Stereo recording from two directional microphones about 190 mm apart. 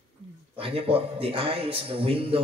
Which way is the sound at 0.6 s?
30° right (ahead or behind).